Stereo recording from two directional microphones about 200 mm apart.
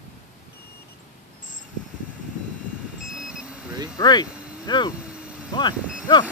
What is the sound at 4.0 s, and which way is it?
Speech, 20° left (ahead or behind).